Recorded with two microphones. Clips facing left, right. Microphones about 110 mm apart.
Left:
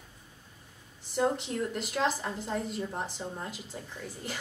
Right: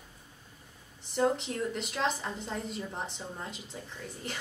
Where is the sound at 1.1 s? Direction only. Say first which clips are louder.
Even; centre (ahead or behind).